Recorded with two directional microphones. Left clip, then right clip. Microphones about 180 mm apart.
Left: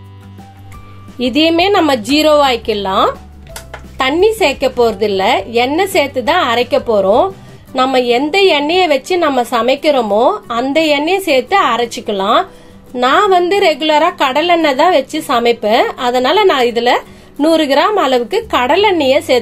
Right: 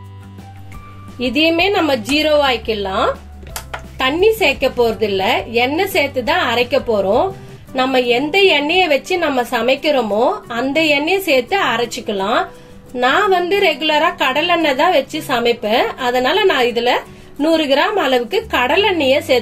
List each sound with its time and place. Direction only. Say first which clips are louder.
1.2 s a woman's voice: left 3 dB; 35° left (ahead or behind)
4.0 s a woman's voice: left 2 dB; 30° left (ahead or behind)